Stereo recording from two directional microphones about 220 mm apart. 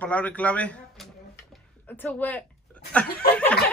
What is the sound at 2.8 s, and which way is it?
Chuckle, 5° left (ahead or behind).